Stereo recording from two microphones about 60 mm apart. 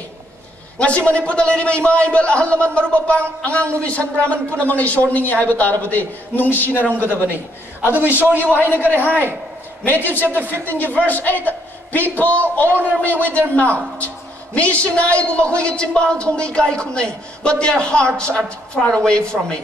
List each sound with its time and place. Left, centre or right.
0.7 s a man's voice: centre
6.9 s a man's voice: right
8.4 s speech: left
10.2 s a man's voice: right
10.6 s a man's voice: left
18.8 s a woman's voice: centre